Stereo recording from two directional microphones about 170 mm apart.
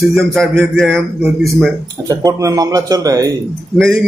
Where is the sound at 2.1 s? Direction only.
20° right (ahead or behind).